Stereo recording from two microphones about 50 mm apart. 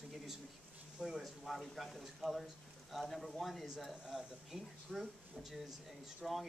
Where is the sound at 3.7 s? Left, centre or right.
Centre.